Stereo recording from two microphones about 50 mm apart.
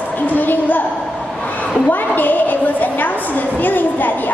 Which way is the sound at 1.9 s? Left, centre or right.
Left.